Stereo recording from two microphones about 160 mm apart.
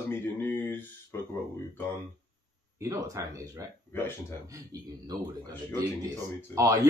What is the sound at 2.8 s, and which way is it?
Speech, 20° right (ahead or behind).